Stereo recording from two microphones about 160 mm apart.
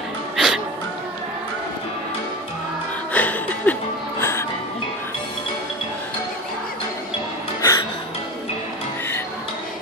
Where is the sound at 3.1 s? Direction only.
10° left (ahead or behind).